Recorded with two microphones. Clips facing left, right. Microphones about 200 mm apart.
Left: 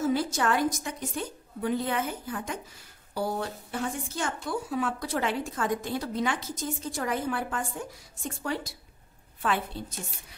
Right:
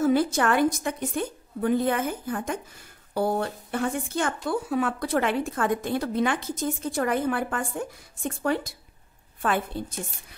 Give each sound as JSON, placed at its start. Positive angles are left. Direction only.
{"t": 0.0, "sound": "a woman's voice", "side_deg": -55}